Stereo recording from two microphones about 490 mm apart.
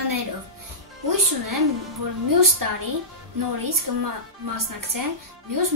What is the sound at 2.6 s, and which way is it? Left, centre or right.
Speech, right.